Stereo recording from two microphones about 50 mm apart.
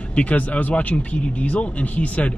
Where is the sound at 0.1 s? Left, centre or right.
Left.